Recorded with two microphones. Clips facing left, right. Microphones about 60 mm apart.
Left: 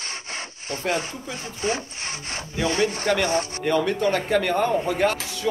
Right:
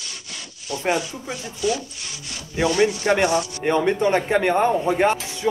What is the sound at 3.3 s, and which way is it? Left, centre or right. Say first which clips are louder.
Speech: right 2 dB; left.